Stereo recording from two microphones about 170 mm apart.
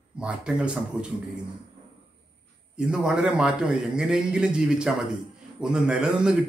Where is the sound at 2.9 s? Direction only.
5° right (ahead or behind).